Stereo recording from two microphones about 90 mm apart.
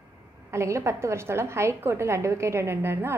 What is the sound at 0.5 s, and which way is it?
A woman's voice, 30° right (ahead or behind).